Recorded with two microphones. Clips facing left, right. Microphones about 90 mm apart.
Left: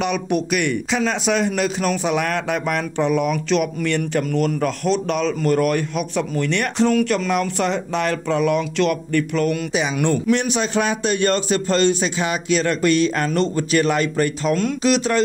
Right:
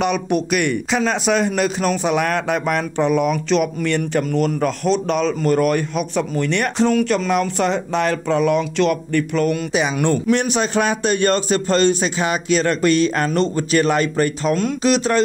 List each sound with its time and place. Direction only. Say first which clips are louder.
0.0 s a man's voice: right 2 dB; 45° right (ahead or behind)
9.7 s a man's voice: right 2 dB; 50° right (ahead or behind)
13.3 s speech: right 1 dB; 30° right (ahead or behind)